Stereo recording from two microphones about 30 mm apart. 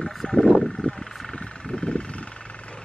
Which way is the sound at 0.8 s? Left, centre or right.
Left.